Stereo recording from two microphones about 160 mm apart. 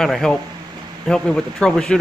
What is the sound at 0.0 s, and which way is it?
Speech, 5° left (ahead or behind).